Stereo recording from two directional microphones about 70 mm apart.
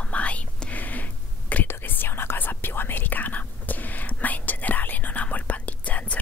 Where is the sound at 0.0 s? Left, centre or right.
Centre.